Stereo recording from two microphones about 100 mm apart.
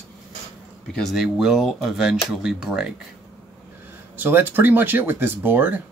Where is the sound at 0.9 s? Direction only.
Centre (ahead or behind).